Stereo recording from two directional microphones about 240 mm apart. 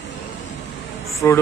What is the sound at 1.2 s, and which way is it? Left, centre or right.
Speech, centre.